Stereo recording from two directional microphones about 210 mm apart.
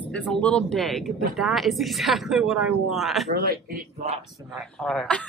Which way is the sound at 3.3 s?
50° right (ahead or behind).